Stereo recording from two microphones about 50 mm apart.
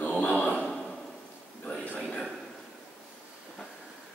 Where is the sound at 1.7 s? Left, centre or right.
Left.